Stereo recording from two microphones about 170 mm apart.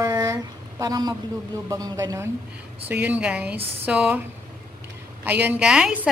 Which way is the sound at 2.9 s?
10° right (ahead or behind).